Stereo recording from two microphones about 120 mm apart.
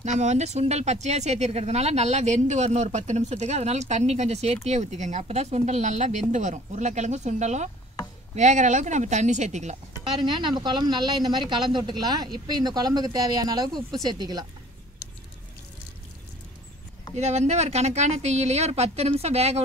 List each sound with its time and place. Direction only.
0.0 s speech: 75° right (ahead or behind)
10.2 s speech: 40° right (ahead or behind)
17.1 s speech: 70° right (ahead or behind)